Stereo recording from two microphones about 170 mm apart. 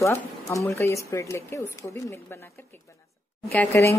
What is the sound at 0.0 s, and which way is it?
Speech, 15° left (ahead or behind).